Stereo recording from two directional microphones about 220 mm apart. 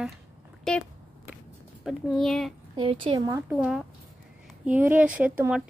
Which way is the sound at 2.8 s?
25° right (ahead or behind).